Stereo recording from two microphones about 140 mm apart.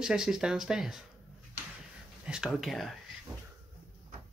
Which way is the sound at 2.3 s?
5° right (ahead or behind).